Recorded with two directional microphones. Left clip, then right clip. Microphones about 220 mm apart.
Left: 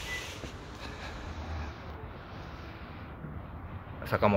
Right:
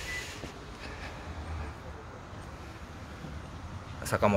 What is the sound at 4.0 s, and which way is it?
Speech, centre (ahead or behind).